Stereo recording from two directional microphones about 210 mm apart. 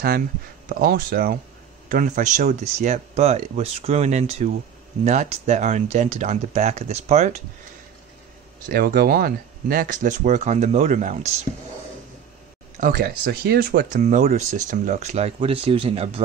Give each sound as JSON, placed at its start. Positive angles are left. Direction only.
{"t": 0.7, "sound": "speech", "side_deg": -45}
{"t": 8.7, "sound": "speech", "side_deg": -45}
{"t": 12.8, "sound": "speech", "side_deg": -45}